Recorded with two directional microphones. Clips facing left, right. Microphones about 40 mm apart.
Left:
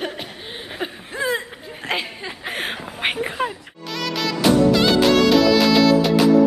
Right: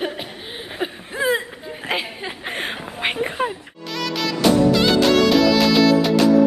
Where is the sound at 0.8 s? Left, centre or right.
Centre.